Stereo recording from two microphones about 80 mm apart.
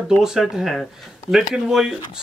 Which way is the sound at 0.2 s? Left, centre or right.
Centre.